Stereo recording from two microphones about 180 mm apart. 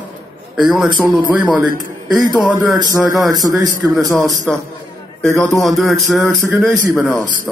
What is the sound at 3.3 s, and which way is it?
Speech, 20° right (ahead or behind).